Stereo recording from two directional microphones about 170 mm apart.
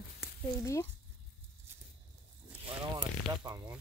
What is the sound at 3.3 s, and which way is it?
Speech, 25° right (ahead or behind).